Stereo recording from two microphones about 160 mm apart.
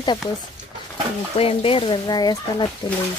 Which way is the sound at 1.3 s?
35° left (ahead or behind).